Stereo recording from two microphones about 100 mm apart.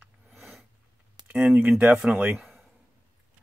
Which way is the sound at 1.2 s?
20° right (ahead or behind).